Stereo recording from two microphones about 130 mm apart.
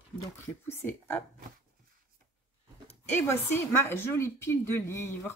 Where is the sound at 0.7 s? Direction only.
20° left (ahead or behind).